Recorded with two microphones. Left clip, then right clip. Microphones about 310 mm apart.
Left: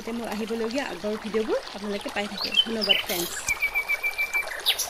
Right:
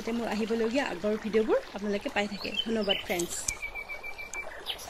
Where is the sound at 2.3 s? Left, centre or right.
Left.